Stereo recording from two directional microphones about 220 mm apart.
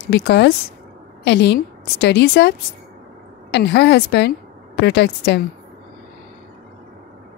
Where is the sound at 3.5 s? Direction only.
50° left (ahead or behind).